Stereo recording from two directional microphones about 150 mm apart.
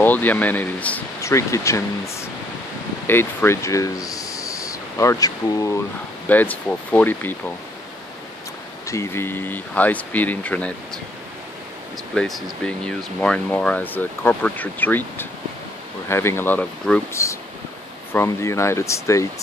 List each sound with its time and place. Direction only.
0.0 s speech: 10° left (ahead or behind)
6.2 s speech: 10° left (ahead or behind)
8.8 s speech: 20° left (ahead or behind)
12.1 s speech: centre (ahead or behind); by 19.2 s 20° left (ahead or behind)